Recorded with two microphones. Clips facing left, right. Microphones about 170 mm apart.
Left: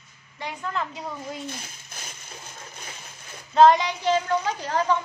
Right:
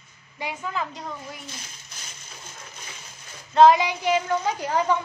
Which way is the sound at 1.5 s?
55° left (ahead or behind).